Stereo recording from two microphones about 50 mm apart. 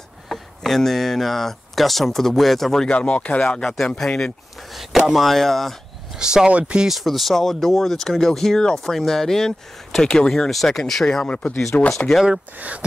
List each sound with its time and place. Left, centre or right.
0.3 s speech: centre
2.9 s speech: left
3.7 s speech: centre
4.7 s speech: centre
6.1 s speech: centre
6.9 s speech: centre
11.1 s speech: centre
12.5 s speech: right